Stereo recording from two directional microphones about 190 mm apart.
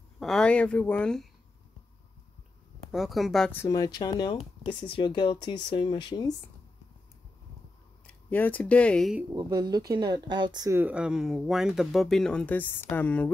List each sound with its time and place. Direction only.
0.2 s speech: 5° left (ahead or behind)
2.9 s speech: centre (ahead or behind)
3.6 s speech: 20° left (ahead or behind)
8.1 s speech: 10° left (ahead or behind)
9.3 s speech: 20° right (ahead or behind); by 13.3 s 5° left (ahead or behind)